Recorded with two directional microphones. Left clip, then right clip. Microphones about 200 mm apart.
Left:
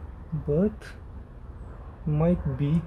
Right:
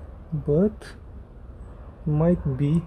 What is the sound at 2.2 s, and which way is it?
Speech, 30° right (ahead or behind).